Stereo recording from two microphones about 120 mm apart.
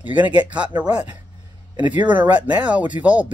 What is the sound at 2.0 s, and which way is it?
Speech, 15° right (ahead or behind).